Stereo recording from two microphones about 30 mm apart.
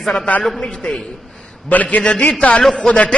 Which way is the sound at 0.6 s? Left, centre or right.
Left.